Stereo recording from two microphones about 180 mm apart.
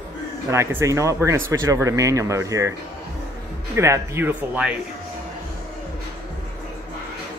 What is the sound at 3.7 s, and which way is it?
Speech, 15° right (ahead or behind).